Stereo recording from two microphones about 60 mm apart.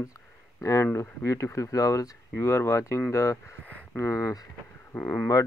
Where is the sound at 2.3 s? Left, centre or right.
Left.